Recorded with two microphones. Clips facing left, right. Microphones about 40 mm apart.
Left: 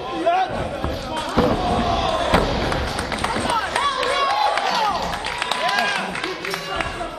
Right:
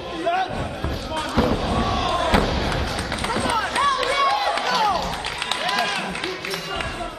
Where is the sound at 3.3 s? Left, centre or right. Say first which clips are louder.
Right 1 dB; centre.